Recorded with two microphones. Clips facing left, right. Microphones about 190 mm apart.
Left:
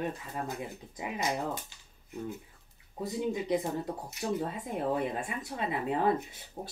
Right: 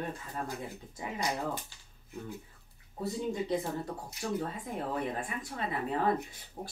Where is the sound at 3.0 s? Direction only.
15° left (ahead or behind).